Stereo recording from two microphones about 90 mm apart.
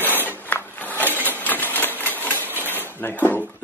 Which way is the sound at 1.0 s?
20° right (ahead or behind).